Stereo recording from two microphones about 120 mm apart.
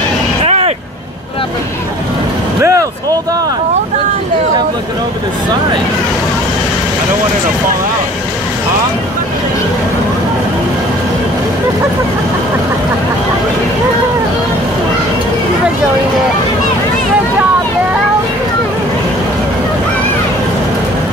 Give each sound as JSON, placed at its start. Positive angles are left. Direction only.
{"t": 0.5, "sound": "vehicle", "side_deg": -55}
{"t": 2.6, "sound": "vehicle", "side_deg": -25}